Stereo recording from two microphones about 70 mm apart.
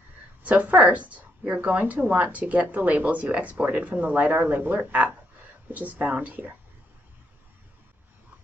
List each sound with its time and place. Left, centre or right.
0.4 s speech: right